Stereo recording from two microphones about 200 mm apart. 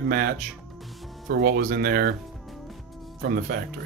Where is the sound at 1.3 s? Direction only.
50° right (ahead or behind).